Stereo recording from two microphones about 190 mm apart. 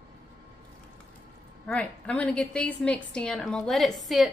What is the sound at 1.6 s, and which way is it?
Speech, 5° left (ahead or behind).